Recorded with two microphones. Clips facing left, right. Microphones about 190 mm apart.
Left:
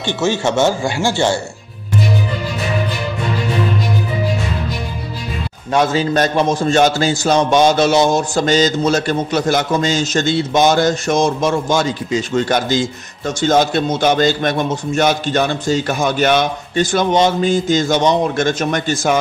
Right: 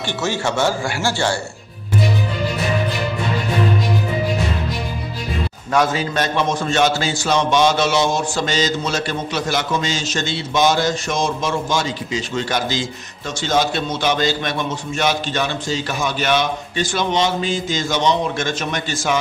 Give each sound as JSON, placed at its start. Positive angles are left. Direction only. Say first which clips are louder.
{"t": 0.0, "sound": "speech", "louder": "left 5 dB", "side_deg": 20}
{"t": 5.7, "sound": "speech", "louder": "left 3 dB", "side_deg": 25}
{"t": 6.1, "sound": "a man's voice", "louder": "left 5 dB", "side_deg": 35}